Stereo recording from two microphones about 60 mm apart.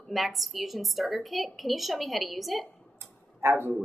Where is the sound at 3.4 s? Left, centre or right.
Right.